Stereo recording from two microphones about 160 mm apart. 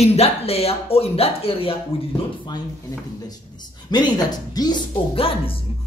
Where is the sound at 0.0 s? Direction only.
40° left (ahead or behind).